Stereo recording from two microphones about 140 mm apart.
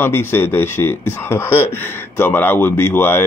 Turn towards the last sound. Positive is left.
turn(degrees=15)  # may be behind; listen again after turning